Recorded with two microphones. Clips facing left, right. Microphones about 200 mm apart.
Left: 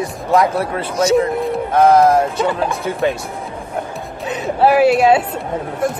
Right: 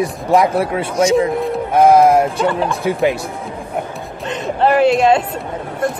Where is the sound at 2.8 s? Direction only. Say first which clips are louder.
Right 2 dB; 15° right (ahead or behind).